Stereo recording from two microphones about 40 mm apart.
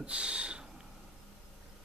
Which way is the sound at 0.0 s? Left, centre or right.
Right.